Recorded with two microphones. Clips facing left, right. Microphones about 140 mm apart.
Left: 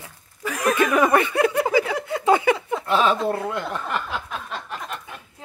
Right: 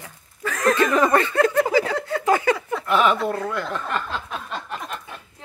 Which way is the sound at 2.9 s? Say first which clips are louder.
Right 1 dB; 30° left (ahead or behind).